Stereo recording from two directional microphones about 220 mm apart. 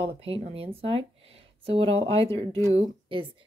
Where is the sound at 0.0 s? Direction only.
25° right (ahead or behind).